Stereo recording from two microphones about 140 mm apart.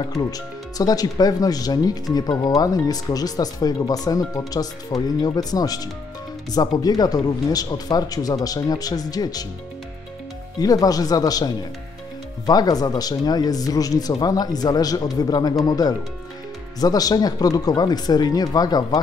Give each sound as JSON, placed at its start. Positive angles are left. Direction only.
{"t": 0.2, "sound": "speech", "side_deg": 25}
{"t": 10.6, "sound": "speech", "side_deg": 25}